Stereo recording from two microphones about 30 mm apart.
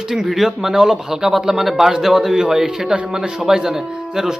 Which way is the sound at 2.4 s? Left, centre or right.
Right.